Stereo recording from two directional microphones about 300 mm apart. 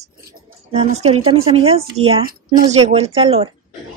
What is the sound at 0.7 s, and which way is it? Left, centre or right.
A woman's voice, right.